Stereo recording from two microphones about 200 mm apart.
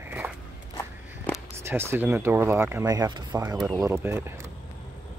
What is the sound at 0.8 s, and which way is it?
Walk, 10° left (ahead or behind).